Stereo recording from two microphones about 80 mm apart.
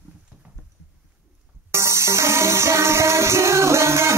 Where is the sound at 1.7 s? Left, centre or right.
Right.